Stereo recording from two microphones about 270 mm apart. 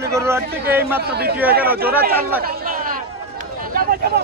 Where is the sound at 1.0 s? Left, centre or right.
Right.